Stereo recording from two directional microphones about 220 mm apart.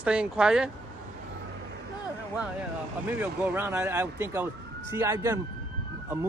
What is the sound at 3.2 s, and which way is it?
A man's voice, 10° right (ahead or behind).